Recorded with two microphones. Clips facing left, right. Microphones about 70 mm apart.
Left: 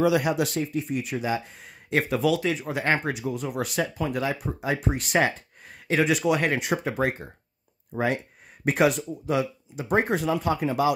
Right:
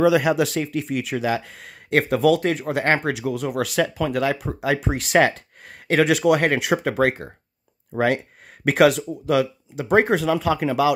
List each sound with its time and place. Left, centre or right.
0.2 s speech: right
8.6 s speech: right